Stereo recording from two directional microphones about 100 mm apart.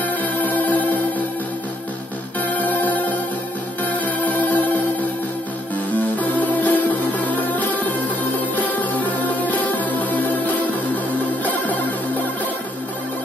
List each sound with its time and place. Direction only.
0.0 s music: 15° left (ahead or behind)
2.7 s music: 15° left (ahead or behind)
5.9 s music: 15° left (ahead or behind)